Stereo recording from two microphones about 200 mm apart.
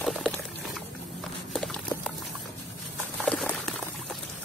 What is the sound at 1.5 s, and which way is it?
Horse, 5° left (ahead or behind).